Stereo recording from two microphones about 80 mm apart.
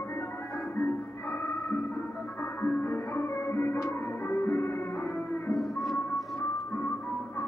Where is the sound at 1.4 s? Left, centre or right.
Left.